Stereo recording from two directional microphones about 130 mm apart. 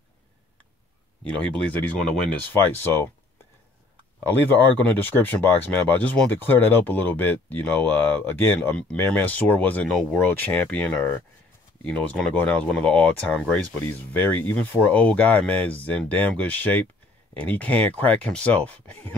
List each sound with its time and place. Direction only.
1.2 s speech: 10° left (ahead or behind)
4.2 s speech: 15° left (ahead or behind)